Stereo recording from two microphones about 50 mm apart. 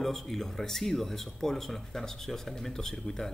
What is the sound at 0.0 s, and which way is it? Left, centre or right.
A man's voice, centre.